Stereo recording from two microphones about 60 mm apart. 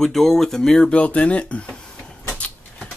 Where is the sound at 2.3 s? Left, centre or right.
Centre.